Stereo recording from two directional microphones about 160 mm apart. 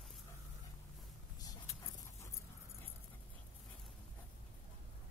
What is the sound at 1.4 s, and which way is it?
Vehicle, 25° left (ahead or behind).